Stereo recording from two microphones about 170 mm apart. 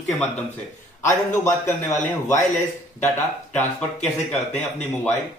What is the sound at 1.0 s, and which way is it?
A man's voice, 20° left (ahead or behind).